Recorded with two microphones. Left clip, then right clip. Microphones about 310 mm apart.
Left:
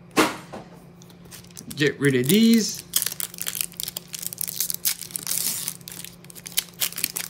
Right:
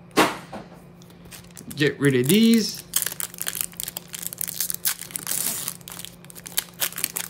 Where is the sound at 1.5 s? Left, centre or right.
Centre.